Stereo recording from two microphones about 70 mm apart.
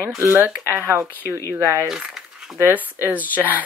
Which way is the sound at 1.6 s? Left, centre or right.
Right.